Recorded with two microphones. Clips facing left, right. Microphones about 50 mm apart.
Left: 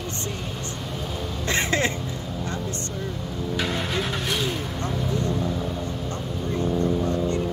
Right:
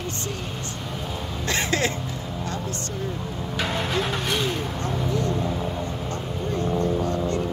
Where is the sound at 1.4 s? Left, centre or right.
Left.